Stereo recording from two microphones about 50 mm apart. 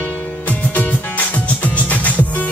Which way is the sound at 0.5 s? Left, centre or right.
Left.